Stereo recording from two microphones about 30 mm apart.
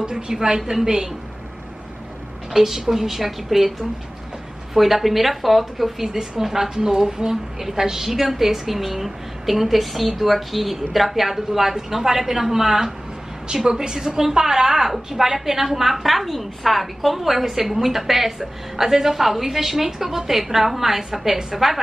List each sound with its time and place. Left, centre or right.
0.0 s speech: right
0.6 s a woman's voice: centre
0.8 s speech: right
2.5 s a woman's voice: centre
4.7 s a woman's voice: centre
6.0 s a woman's voice: centre